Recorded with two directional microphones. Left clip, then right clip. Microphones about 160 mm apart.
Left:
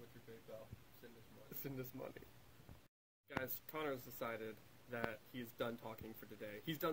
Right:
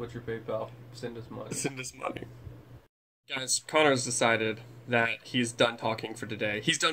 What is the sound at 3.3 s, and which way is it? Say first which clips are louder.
Speech: right 14 dB; 20° left (ahead or behind).